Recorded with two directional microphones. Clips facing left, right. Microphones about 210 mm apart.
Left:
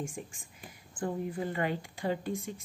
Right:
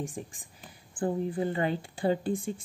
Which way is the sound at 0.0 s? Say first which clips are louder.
Right 2 dB; 35° right (ahead or behind).